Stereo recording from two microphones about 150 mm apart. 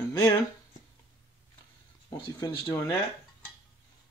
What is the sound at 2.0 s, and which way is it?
Speech, 30° left (ahead or behind).